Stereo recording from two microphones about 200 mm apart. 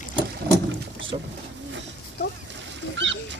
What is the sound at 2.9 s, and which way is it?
Bird, 65° right (ahead or behind).